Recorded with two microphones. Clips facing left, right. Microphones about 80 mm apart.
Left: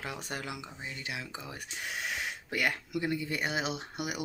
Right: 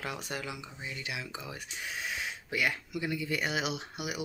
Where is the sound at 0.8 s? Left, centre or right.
Left.